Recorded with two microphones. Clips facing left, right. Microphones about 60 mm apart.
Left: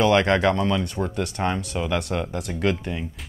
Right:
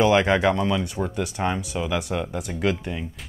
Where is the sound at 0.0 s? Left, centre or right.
Centre.